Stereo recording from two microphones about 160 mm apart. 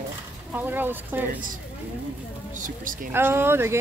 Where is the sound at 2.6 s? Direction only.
60° right (ahead or behind).